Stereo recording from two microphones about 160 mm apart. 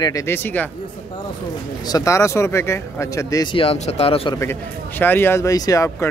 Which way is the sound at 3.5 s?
40° left (ahead or behind).